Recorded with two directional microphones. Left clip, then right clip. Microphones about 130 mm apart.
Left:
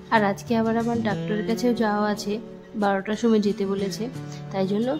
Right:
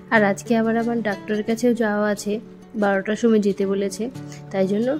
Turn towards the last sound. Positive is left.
turn(degrees=-20)  # may be behind; listen again after turning